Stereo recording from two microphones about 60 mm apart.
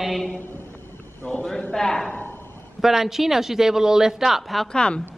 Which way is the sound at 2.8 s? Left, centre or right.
Centre.